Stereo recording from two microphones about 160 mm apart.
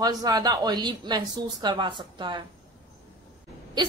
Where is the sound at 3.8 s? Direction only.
25° right (ahead or behind).